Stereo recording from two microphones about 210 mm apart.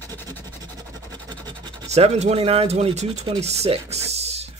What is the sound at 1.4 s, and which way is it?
Speech, 20° right (ahead or behind).